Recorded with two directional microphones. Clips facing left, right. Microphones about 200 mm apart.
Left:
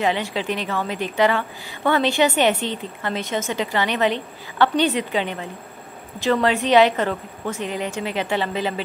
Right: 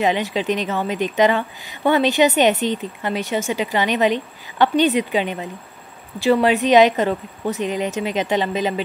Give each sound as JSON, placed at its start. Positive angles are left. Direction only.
{"t": 0.0, "sound": "a woman's voice", "side_deg": -15}